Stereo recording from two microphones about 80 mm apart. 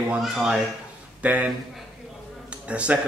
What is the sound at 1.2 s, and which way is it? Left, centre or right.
Speech, centre.